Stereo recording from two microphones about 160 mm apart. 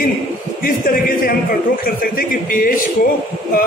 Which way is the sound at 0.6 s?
65° left (ahead or behind).